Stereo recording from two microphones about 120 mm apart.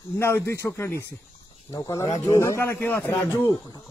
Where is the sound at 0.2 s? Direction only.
25° left (ahead or behind).